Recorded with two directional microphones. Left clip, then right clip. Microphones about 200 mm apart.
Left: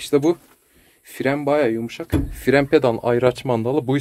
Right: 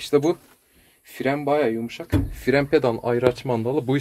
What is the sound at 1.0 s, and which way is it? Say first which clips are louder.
Speech: left 2 dB; 20° left (ahead or behind).